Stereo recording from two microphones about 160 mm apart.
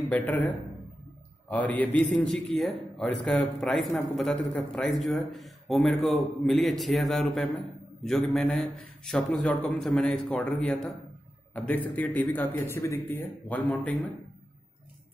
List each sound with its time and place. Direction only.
1.5 s a man's voice: 10° left (ahead or behind)